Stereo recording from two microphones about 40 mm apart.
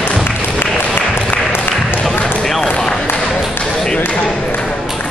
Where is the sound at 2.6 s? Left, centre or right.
Left.